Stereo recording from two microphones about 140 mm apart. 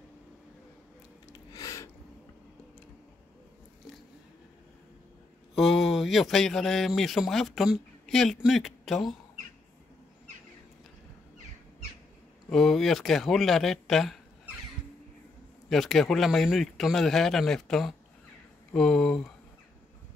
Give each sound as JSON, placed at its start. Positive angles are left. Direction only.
{"t": 1.5, "sound": "a sound", "side_deg": 25}
{"t": 5.5, "sound": "speech", "side_deg": 0}
{"t": 12.4, "sound": "a man's voice", "side_deg": 5}
{"t": 15.7, "sound": "a man's voice", "side_deg": 0}